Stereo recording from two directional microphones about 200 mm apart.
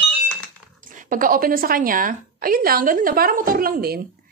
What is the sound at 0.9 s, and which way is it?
A woman's voice, 40° right (ahead or behind).